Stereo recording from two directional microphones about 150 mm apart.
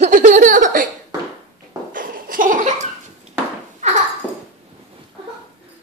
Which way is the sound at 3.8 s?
50° right (ahead or behind).